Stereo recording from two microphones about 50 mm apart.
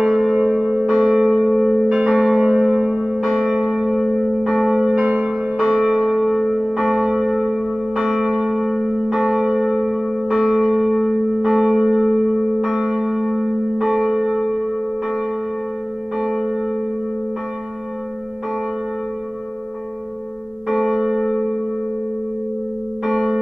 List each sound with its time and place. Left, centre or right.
0.0 s music: centre
0.8 s music: centre
1.9 s change ringing: centre
2.4 s music: centre
3.2 s church bell: centre
16.2 s music: centre
20.6 s church bell: centre
23.0 s church bell: centre